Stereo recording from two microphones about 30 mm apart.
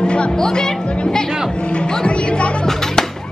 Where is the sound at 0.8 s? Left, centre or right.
Left.